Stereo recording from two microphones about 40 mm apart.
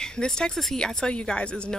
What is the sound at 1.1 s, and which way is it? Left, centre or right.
Speech, left.